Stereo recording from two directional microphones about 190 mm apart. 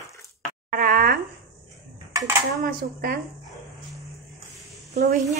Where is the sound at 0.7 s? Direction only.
45° right (ahead or behind).